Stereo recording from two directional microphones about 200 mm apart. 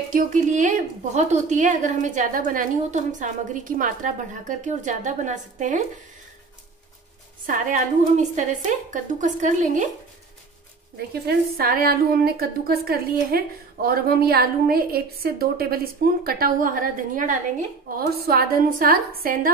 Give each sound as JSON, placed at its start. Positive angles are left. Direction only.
{"t": 0.1, "sound": "a woman's voice", "side_deg": -40}
{"t": 7.4, "sound": "a woman's voice", "side_deg": -40}
{"t": 11.2, "sound": "a woman's voice", "side_deg": -45}